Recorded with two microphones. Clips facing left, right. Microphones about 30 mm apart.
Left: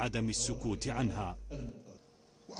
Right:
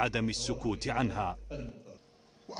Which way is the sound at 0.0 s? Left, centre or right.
Right.